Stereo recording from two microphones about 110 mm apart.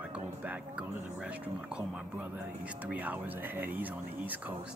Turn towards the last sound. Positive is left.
turn(degrees=-15)  # may be behind; listen again after turning